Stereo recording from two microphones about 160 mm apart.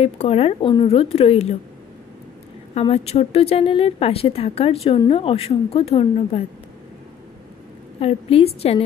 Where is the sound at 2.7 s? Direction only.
35° left (ahead or behind).